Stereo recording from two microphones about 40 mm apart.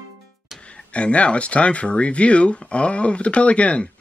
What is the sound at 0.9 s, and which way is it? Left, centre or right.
Speech, left.